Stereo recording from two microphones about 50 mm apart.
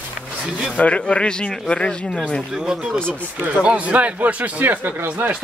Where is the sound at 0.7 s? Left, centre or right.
Left.